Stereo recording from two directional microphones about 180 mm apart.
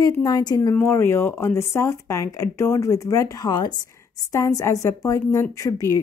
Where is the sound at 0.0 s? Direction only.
20° left (ahead or behind).